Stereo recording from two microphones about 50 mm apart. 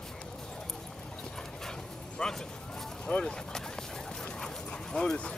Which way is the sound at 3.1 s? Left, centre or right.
Centre.